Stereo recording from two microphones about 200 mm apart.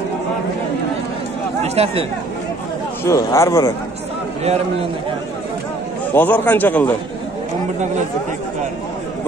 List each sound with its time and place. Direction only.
1.6 s speech: 30° right (ahead or behind)
3.1 s a man's voice: 15° left (ahead or behind)
6.1 s a man's voice: 10° left (ahead or behind)